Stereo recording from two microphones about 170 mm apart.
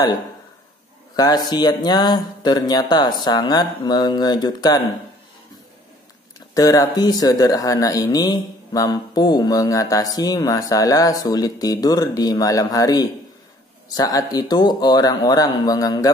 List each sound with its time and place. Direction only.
1.1 s a man's voice: 20° left (ahead or behind)
6.5 s speech: 20° left (ahead or behind)